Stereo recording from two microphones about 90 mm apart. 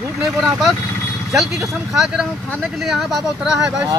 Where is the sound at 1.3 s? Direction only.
Centre (ahead or behind).